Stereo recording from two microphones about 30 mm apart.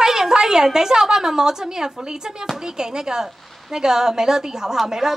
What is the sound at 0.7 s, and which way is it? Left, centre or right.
A woman's voice, centre.